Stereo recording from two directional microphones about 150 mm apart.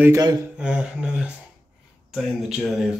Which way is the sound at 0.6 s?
5° right (ahead or behind).